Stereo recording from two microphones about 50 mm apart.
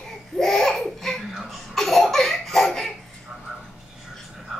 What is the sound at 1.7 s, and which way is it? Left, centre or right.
Laughter, centre.